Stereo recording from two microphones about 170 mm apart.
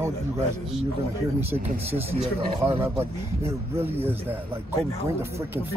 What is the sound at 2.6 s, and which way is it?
Speech, 15° right (ahead or behind).